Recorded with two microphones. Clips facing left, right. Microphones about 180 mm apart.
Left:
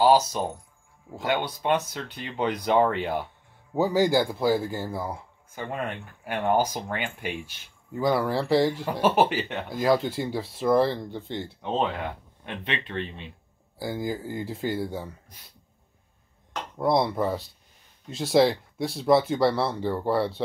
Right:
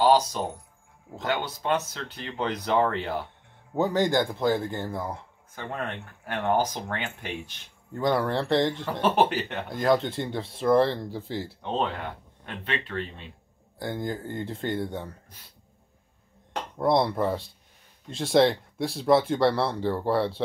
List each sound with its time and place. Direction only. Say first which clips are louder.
0.0 s a sound: left 1 dB; 10° left (ahead or behind)
1.1 s speech: left 2 dB; 10° left (ahead or behind)
12.6 s speech: even; 20° left (ahead or behind)
13.7 s speech: left 1 dB; 5° left (ahead or behind)
16.7 s speech: even; centre (ahead or behind)